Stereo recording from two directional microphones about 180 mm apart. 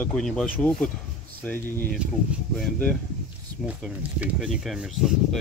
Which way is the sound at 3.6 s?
5° right (ahead or behind).